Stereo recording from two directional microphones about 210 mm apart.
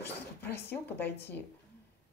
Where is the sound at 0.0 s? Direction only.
10° left (ahead or behind).